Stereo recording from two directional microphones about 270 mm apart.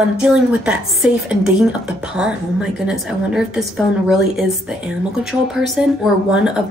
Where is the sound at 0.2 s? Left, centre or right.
Centre.